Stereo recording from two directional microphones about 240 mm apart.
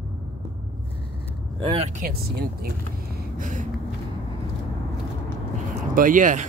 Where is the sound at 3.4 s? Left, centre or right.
Right.